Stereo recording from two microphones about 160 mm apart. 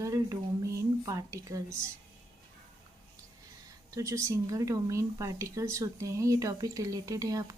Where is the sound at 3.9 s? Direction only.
20° right (ahead or behind).